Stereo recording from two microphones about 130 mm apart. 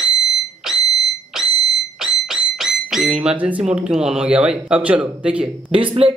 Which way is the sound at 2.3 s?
5° right (ahead or behind).